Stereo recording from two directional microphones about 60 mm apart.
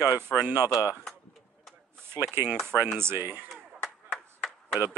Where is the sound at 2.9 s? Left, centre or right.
Right.